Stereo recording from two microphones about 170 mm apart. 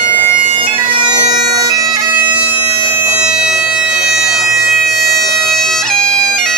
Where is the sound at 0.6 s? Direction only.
30° right (ahead or behind); by 4.4 s 5° right (ahead or behind).